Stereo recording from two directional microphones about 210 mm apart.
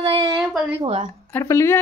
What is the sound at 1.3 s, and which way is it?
Speech, 10° left (ahead or behind).